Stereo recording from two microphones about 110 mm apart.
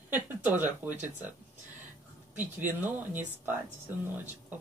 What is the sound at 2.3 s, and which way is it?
Speech, 15° right (ahead or behind).